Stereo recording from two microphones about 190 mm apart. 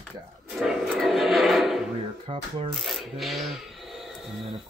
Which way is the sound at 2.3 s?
30° right (ahead or behind).